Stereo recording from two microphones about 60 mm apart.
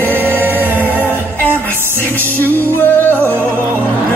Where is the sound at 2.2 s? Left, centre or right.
Left.